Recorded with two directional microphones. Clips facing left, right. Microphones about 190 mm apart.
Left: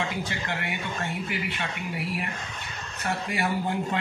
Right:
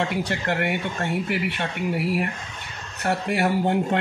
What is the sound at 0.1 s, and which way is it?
Speech, 65° right (ahead or behind).